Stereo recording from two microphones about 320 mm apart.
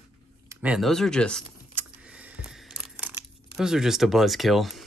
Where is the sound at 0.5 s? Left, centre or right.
Centre.